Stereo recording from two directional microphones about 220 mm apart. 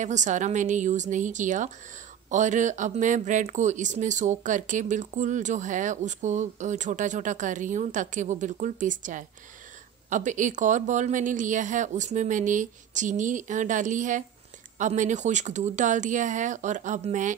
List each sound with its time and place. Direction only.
0.0 s speech: 35° right (ahead or behind)